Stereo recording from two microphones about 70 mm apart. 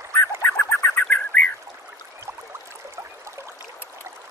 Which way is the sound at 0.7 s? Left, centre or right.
Left.